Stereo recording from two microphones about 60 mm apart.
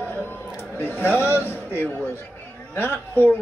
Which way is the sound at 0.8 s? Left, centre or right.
Left.